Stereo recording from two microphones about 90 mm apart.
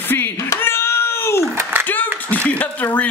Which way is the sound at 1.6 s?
25° right (ahead or behind).